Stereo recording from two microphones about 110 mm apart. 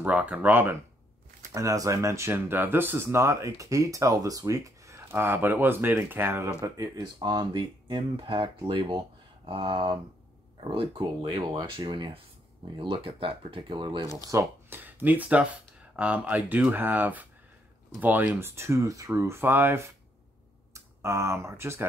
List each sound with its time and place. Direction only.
0.0 s speech: 15° right (ahead or behind)
1.5 s speech: 30° right (ahead or behind)
7.2 s speech: 40° right (ahead or behind)
14.1 s speech: 20° right (ahead or behind)